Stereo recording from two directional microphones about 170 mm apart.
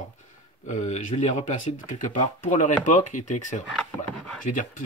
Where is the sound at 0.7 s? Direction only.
45° left (ahead or behind).